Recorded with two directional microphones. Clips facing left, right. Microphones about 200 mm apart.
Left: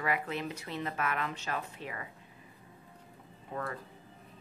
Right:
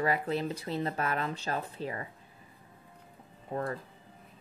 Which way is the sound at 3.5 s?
35° right (ahead or behind).